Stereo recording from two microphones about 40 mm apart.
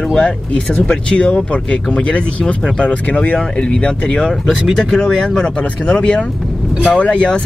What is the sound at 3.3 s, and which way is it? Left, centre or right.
Speech, left.